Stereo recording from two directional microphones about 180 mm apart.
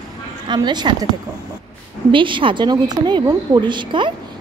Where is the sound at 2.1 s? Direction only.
25° right (ahead or behind).